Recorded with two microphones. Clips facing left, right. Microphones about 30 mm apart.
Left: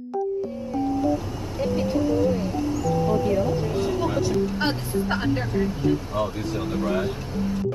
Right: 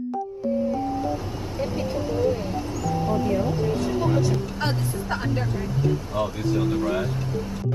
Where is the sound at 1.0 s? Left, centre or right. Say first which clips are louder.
Left 3 dB; centre.